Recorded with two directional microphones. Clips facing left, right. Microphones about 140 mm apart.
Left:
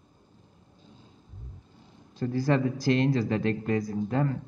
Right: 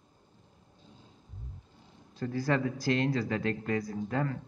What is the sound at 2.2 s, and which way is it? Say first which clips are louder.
A man's voice: left 4 dB; 30° left (ahead or behind).